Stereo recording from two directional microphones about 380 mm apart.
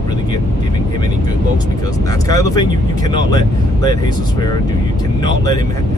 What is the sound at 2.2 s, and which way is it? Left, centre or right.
Speech, centre.